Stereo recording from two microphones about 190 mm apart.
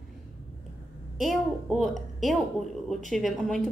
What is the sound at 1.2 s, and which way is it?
Speech, centre (ahead or behind).